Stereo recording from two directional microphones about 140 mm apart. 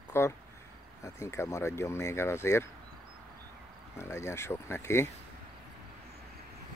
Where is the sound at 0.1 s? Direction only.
20° left (ahead or behind).